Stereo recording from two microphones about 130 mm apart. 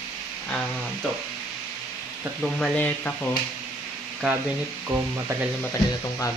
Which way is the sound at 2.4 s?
Centre (ahead or behind).